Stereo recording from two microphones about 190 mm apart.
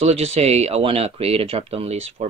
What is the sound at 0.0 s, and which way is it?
Speech, 35° right (ahead or behind).